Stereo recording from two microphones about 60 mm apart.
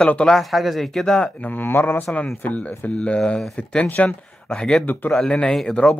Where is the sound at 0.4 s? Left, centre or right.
Centre.